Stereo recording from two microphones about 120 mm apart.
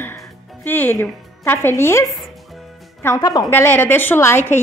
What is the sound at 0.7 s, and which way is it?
A woman's voice, 15° left (ahead or behind).